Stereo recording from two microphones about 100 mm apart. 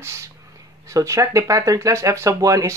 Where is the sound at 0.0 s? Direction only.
30° right (ahead or behind).